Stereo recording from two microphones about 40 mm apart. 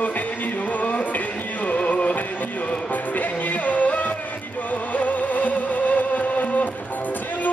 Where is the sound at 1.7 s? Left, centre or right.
Left.